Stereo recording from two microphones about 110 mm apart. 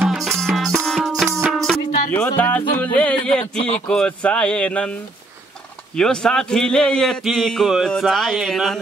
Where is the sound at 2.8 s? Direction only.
10° left (ahead or behind).